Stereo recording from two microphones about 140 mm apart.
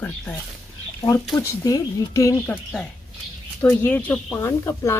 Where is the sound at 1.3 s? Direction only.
20° left (ahead or behind).